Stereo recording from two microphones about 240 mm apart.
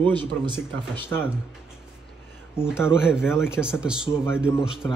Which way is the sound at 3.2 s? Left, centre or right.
Centre.